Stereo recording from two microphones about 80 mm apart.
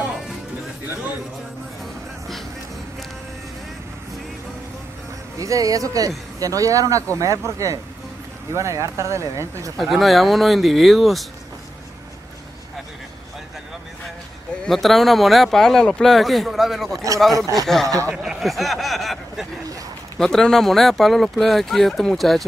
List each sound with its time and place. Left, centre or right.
5.4 s speech: right
9.8 s speech: centre
14.6 s speech: centre
16.9 s speech: right
17.2 s speech: centre
18.1 s a sound: centre
20.2 s speech: centre